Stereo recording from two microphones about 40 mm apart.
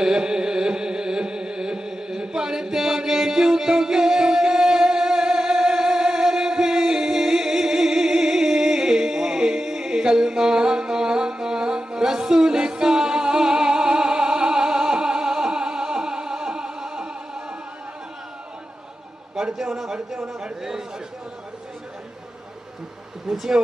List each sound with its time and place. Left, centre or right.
0.0 s music: centre
19.5 s a sound: centre
23.2 s speech: centre